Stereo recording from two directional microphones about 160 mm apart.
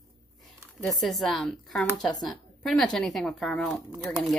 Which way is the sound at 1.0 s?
Centre (ahead or behind).